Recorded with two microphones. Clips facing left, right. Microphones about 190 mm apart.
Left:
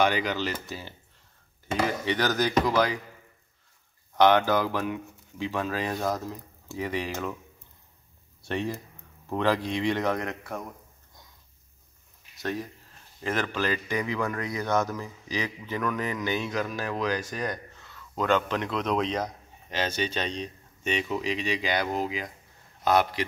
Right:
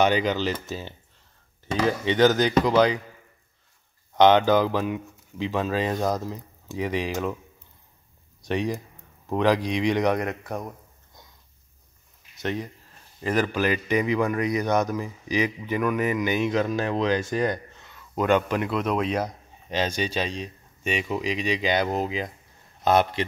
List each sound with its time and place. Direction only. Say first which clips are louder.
0.0 s speech: right 4 dB; 20° right (ahead or behind)
2.0 s speech: right 10 dB; 20° right (ahead or behind)
4.2 s speech: right 4 dB; 20° right (ahead or behind)
8.5 s a man's voice: right 4 dB; 15° right (ahead or behind)
12.4 s speech: right 3 dB; 20° right (ahead or behind)
13.2 s a man's voice: right 5 dB; 5° right (ahead or behind); by 23.2 s 25° right (ahead or behind)